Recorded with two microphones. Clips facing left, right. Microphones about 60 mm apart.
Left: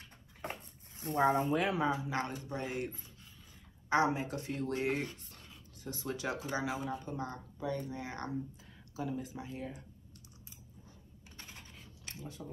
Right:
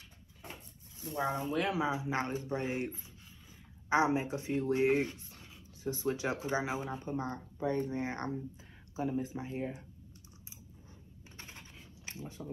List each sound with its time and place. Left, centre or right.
0.4 s a sound: left
1.6 s speech: centre
1.9 s speech: centre
2.1 s speech: right
11.3 s computer keyboard: right
12.1 s speech: right